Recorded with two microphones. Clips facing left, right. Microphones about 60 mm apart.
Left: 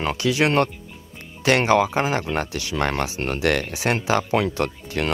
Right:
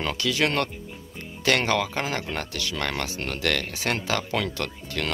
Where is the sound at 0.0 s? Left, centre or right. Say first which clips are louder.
Left 4 dB; left.